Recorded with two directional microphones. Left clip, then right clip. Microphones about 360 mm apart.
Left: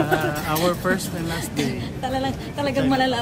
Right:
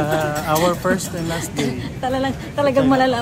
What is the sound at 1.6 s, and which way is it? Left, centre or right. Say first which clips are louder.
Speech: right 2 dB; centre.